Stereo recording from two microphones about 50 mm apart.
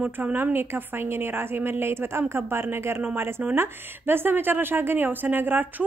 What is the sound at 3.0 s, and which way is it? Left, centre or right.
Speech, right.